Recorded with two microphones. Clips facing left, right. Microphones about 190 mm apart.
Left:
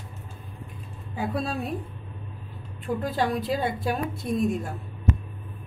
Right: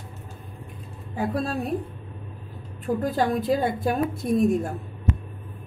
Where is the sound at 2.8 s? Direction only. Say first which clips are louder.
Right 3 dB; 45° right (ahead or behind).